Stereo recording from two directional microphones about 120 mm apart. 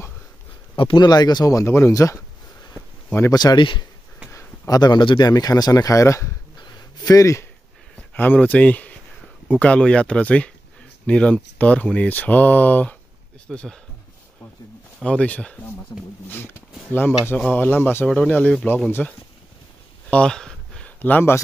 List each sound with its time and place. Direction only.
0.7 s speech: 40° left (ahead or behind); by 2.2 s 25° left (ahead or behind)
3.3 s speech: 35° left (ahead or behind)
4.3 s speech: 30° left (ahead or behind)
6.6 s a sound: 35° left (ahead or behind)
8.1 s speech: 15° left (ahead or behind)
15.0 s speech: 10° left (ahead or behind)
20.1 s a sound: 5° left (ahead or behind)